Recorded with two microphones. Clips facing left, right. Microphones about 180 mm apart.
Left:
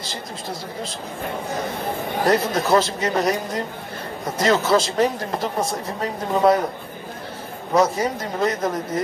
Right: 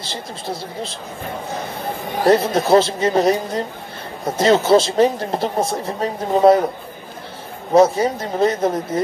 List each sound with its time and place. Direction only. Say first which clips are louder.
0.0 s speech: right 2 dB; 30° right (ahead or behind)
2.2 s speech: right 5 dB; 25° right (ahead or behind)
7.7 s speech: right 5 dB; 30° right (ahead or behind)